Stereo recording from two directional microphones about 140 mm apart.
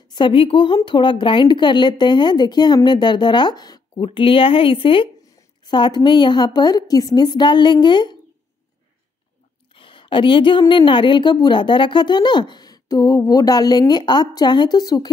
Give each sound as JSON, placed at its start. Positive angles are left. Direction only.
{"t": 0.1, "sound": "a woman's voice", "side_deg": 35}
{"t": 9.8, "sound": "a woman's voice", "side_deg": 35}